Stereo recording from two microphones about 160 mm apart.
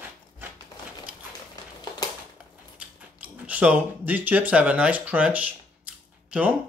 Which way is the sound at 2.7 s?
10° right (ahead or behind).